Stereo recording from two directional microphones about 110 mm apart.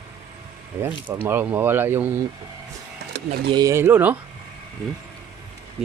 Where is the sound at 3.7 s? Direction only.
20° right (ahead or behind).